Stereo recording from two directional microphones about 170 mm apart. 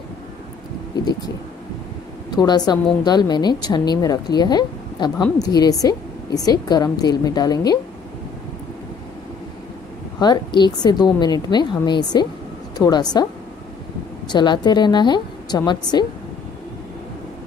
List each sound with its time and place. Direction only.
2.3 s speech: 25° left (ahead or behind)
10.1 s a woman's voice: 25° left (ahead or behind)
14.3 s speech: 25° left (ahead or behind)